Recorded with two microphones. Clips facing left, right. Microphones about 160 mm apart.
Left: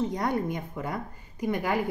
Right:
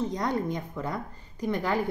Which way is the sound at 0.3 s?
10° left (ahead or behind).